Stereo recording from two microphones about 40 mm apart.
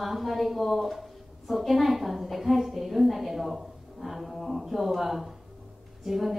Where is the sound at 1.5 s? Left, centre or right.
Centre.